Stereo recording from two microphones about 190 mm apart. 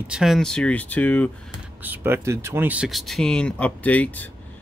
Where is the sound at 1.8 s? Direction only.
10° right (ahead or behind); by 4.3 s 10° left (ahead or behind).